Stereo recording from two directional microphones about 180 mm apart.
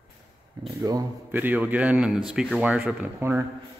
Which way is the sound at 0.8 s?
20° right (ahead or behind).